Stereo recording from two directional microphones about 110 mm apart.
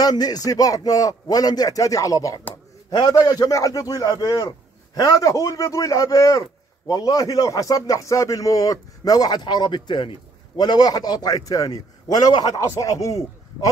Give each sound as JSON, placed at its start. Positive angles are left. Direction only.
{"t": 0.0, "sound": "a man's voice", "side_deg": 35}